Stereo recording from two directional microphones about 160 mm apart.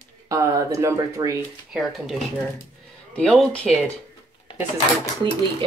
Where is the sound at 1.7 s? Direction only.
5° right (ahead or behind).